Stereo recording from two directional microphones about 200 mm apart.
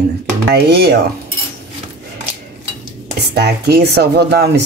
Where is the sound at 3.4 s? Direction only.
55° right (ahead or behind).